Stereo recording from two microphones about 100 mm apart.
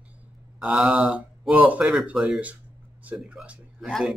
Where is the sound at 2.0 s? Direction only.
5° right (ahead or behind).